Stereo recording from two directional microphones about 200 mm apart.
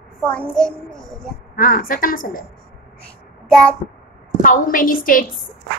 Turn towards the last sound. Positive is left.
turn(degrees=45)  # may be behind; listen again after turning